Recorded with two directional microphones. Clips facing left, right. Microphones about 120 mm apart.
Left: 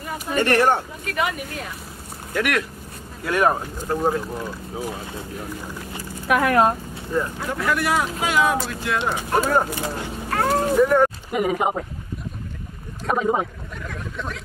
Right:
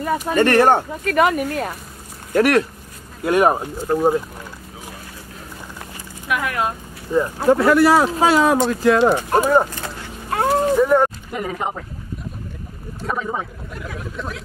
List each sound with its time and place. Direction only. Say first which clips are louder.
0.4 s speech: right 4 dB; 45° right (ahead or behind)
2.3 s speech: right 8 dB; 35° right (ahead or behind)
3.3 s speech: right 4 dB; 20° right (ahead or behind)
6.2 s speech: left 5 dB; 45° left (ahead or behind)
7.1 s speech: right 5 dB; 10° right (ahead or behind)
7.5 s speech: right 8 dB; 35° right (ahead or behind)
9.3 s speech: right 4 dB; 15° right (ahead or behind)
9.7 s speech: left 4 dB; 15° left (ahead or behind)
10.3 s a sound: right 2 dB; 20° right (ahead or behind)
11.3 s speech: left 4 dB; 15° left (ahead or behind)
13.1 s speech: left 4 dB; 20° left (ahead or behind)
13.7 s speech: right 2 dB; 5° right (ahead or behind)